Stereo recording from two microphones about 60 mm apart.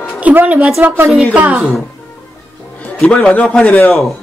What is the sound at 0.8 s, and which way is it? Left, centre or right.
Speech, right.